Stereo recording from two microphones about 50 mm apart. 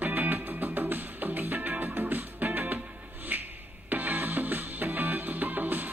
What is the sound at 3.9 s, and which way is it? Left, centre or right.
Music, right.